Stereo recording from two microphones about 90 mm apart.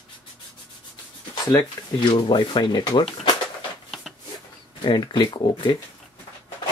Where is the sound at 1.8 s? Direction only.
40° left (ahead or behind).